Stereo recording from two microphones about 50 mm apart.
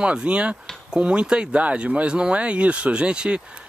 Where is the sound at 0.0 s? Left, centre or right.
Centre.